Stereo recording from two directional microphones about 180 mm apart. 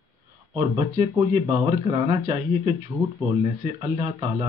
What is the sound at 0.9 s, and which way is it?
Speech, 25° right (ahead or behind).